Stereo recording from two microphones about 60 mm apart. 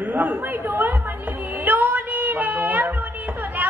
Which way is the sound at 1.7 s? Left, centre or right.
Right.